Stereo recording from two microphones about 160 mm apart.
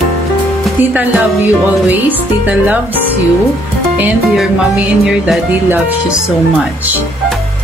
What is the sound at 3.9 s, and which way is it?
Speech, 5° right (ahead or behind).